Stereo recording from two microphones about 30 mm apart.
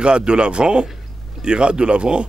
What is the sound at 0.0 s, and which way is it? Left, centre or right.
A man's voice, right.